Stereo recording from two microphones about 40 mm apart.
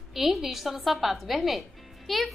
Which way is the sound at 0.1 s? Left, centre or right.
Centre.